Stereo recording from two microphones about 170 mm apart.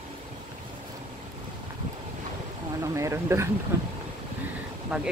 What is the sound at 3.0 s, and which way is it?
Speech, 15° right (ahead or behind).